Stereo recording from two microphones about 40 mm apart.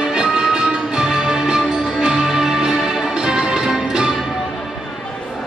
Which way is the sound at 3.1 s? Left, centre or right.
Centre.